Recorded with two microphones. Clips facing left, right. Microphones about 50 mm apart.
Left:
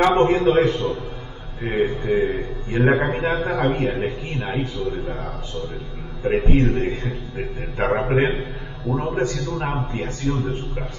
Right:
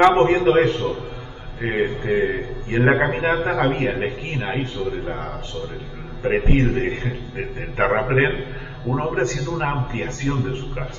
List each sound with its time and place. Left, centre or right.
0.0 s a man's voice: right